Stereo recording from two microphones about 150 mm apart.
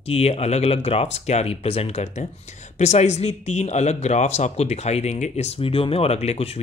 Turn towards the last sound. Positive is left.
turn(degrees=45)  # may be behind; listen again after turning